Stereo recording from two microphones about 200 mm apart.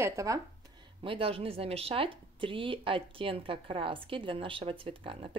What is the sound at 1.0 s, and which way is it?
Speech, 25° right (ahead or behind).